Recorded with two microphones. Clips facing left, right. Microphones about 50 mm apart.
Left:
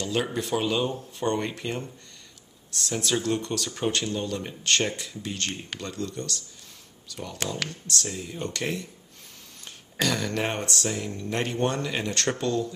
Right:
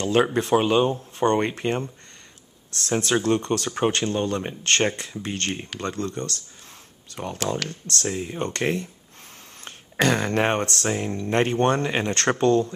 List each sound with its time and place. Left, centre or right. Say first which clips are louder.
0.0 s speech: right 7 dB; right